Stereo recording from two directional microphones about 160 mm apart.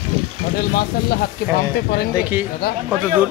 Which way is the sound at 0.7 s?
70° left (ahead or behind).